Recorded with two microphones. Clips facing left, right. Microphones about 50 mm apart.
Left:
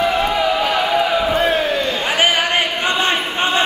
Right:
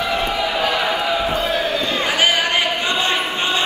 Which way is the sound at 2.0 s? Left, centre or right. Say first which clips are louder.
Left 1 dB; left.